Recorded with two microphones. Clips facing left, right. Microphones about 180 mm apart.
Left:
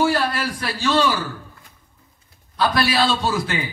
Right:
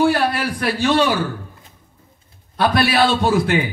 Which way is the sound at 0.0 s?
60° right (ahead or behind).